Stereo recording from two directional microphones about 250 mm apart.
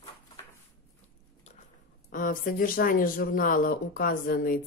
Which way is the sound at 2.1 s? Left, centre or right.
Left.